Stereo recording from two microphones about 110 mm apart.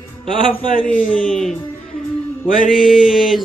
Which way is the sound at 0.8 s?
10° left (ahead or behind).